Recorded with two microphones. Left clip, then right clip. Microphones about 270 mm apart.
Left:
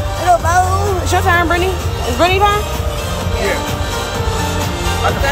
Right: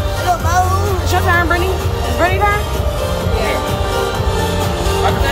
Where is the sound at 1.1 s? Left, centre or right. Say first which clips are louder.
Left 1 dB; left.